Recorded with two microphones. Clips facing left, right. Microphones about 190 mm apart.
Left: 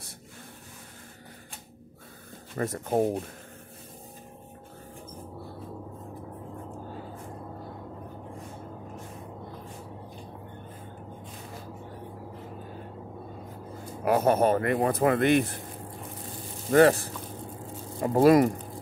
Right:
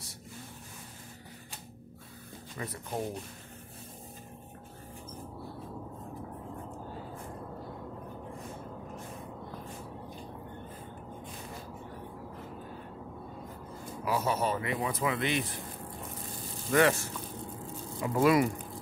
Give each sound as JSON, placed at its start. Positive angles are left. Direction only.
{"t": 2.5, "sound": "speech", "side_deg": 45}
{"t": 14.0, "sound": "speech", "side_deg": 55}
{"t": 16.7, "sound": "speech", "side_deg": 35}